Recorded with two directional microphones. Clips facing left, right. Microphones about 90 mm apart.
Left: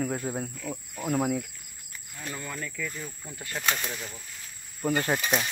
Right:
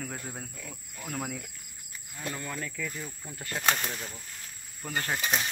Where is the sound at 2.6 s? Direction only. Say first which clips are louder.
Left 1 dB; 45° right (ahead or behind).